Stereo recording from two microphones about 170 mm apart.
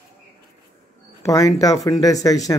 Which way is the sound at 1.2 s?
20° left (ahead or behind).